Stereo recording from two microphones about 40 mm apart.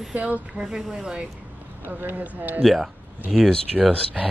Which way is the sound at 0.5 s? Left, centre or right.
Centre.